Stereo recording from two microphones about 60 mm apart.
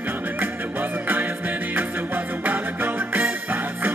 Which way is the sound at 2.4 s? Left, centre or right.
Right.